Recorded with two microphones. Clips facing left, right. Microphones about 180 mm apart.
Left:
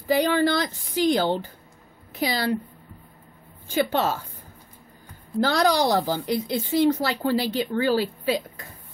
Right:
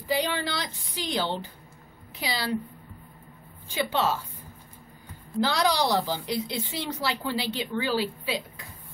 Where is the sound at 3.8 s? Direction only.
45° left (ahead or behind).